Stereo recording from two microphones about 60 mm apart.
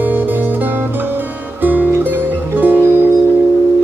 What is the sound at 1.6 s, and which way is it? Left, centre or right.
Music, right.